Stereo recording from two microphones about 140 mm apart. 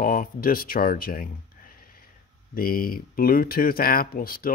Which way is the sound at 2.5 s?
90° left.